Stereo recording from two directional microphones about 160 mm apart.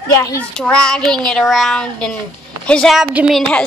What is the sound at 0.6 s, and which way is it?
A woman's voice, 5° left (ahead or behind).